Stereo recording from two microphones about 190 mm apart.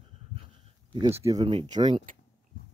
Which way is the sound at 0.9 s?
30° right (ahead or behind).